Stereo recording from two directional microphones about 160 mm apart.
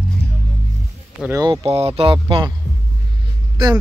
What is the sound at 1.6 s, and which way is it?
Speech, 40° right (ahead or behind).